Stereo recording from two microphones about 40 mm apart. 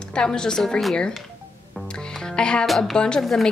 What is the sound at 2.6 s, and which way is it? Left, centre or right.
Speech, centre.